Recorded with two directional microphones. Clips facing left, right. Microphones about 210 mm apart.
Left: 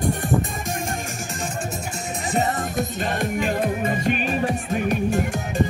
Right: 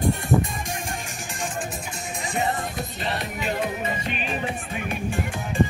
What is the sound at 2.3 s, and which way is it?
Music, 45° left (ahead or behind).